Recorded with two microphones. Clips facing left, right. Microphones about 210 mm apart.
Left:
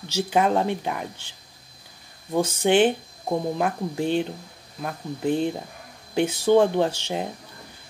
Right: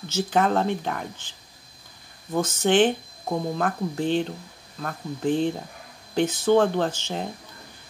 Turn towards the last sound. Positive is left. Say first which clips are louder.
# left 2 dB
turn(degrees=10)  # may be behind; listen again after turning